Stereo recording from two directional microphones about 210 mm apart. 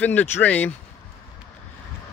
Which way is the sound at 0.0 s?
10° left (ahead or behind).